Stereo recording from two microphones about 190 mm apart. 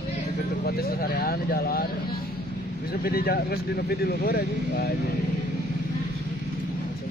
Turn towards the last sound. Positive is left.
turn(degrees=55)  # may be behind; listen again after turning